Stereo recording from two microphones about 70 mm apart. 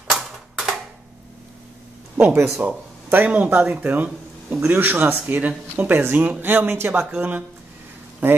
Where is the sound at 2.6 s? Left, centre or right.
Right.